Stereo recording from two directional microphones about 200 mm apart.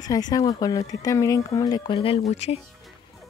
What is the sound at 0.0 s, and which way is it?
Speech, 20° left (ahead or behind).